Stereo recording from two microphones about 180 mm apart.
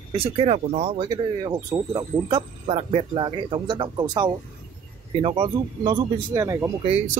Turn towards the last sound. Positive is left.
turn(degrees=-35)  # may be behind; listen again after turning